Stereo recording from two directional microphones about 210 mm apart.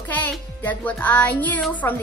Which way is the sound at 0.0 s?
5° left (ahead or behind).